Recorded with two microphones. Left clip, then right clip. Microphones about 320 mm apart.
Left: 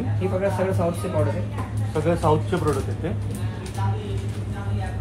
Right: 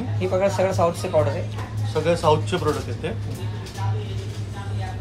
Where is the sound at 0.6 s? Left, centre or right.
Right.